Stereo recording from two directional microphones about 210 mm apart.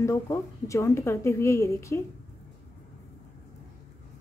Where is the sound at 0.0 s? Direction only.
15° left (ahead or behind).